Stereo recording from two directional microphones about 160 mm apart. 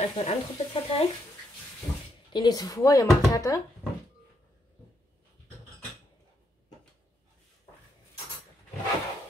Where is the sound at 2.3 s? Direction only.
25° left (ahead or behind).